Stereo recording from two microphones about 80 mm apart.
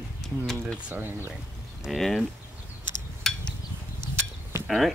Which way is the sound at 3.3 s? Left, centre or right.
Centre.